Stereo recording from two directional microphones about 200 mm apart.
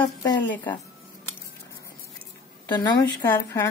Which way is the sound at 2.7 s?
20° left (ahead or behind).